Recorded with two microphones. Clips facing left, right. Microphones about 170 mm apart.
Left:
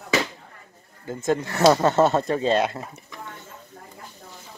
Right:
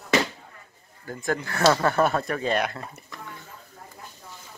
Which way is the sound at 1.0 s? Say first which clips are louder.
Left 4 dB; 20° left (ahead or behind).